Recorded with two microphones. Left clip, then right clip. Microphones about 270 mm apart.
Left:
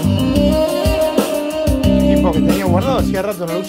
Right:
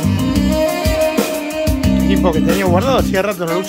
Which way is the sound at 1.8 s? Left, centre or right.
Centre.